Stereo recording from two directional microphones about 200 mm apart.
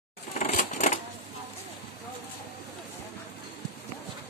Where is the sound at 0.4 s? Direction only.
35° left (ahead or behind).